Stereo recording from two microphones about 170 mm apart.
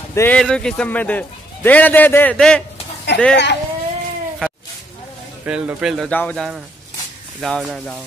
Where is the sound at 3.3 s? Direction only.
85° left.